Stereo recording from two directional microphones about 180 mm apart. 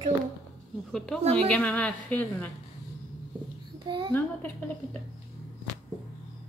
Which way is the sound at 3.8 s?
25° right (ahead or behind).